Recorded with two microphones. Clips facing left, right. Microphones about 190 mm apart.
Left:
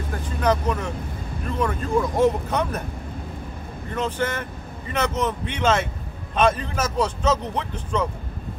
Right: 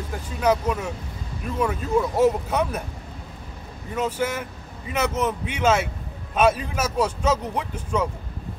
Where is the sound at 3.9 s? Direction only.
10° right (ahead or behind).